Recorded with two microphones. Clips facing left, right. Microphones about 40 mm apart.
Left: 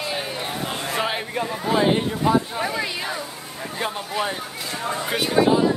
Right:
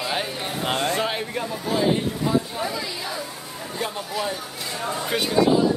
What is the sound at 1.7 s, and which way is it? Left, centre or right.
Speech, left.